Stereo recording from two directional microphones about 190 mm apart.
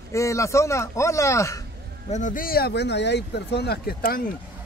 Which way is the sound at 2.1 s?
40° left (ahead or behind).